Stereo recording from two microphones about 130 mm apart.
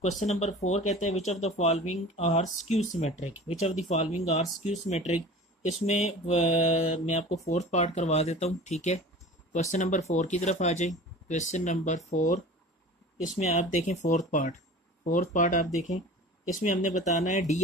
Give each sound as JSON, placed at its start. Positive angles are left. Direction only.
{"t": 0.0, "sound": "speech", "side_deg": 60}
{"t": 13.4, "sound": "speech", "side_deg": 60}
{"t": 14.0, "sound": "speech", "side_deg": 75}